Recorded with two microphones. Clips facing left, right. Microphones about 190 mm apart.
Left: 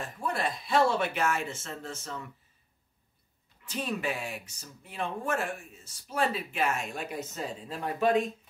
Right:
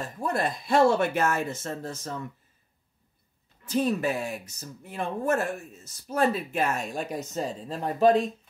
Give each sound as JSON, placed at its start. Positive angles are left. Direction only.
{"t": 0.0, "sound": "speech", "side_deg": -45}
{"t": 3.6, "sound": "speech", "side_deg": -40}